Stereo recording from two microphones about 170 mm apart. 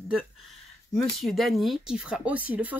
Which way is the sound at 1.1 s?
Centre (ahead or behind).